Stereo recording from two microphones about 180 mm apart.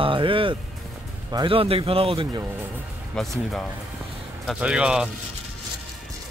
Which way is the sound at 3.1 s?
Centre (ahead or behind).